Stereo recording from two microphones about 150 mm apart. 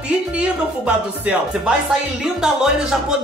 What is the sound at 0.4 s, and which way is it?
Speech, 10° right (ahead or behind).